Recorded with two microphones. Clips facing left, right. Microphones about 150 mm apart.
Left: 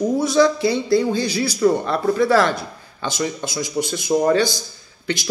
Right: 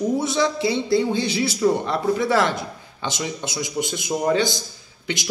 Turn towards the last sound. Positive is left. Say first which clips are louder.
# left 3 dB
turn(degrees=-20)  # may be behind; listen again after turning